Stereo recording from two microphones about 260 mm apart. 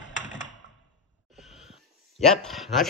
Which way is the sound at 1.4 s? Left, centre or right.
Centre.